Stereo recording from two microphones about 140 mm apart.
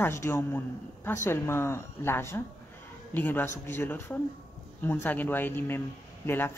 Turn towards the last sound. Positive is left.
turn(degrees=15)  # may be behind; listen again after turning